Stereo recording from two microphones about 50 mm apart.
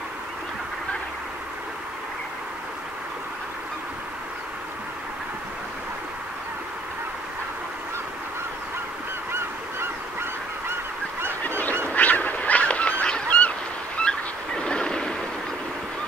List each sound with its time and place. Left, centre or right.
10.7 s goose: right
11.4 s goose: left
13.9 s a sound: centre